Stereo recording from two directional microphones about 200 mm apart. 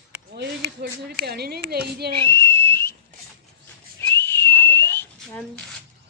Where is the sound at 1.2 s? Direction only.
50° right (ahead or behind).